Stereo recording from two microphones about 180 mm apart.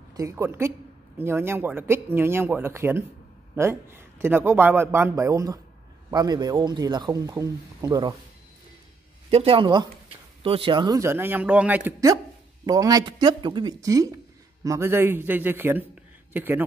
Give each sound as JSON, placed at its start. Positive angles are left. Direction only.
{"t": 0.1, "sound": "a man's voice", "side_deg": -15}
{"t": 9.3, "sound": "a man's voice", "side_deg": -30}
{"t": 12.6, "sound": "a man's voice", "side_deg": -20}